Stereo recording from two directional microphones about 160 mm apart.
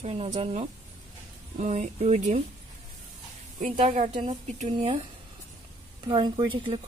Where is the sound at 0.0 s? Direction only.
40° right (ahead or behind).